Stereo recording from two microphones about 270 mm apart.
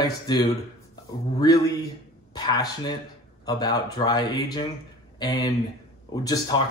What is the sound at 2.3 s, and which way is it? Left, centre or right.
Speech, centre.